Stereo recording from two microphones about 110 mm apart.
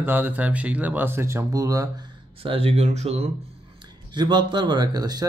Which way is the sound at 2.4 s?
60° right (ahead or behind).